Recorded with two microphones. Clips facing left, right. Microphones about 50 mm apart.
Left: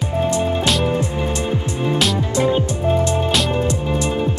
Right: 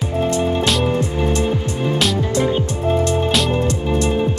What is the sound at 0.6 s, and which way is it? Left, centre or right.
Music, centre.